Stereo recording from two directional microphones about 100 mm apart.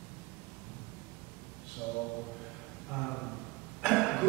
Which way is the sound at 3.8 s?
5° left (ahead or behind).